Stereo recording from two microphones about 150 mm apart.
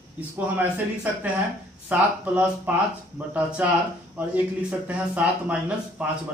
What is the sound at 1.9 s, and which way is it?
Speech, 10° right (ahead or behind).